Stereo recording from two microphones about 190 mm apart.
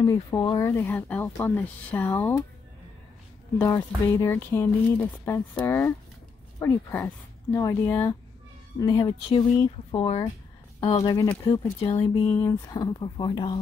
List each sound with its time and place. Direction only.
0.0 s speech: 20° left (ahead or behind)
3.5 s speech: 15° left (ahead or behind); by 12.4 s 30° left (ahead or behind)
12.4 s speech: 15° left (ahead or behind)